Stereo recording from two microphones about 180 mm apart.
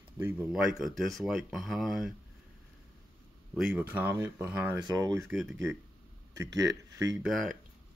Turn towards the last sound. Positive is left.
turn(degrees=0)  # may be behind; listen again after turning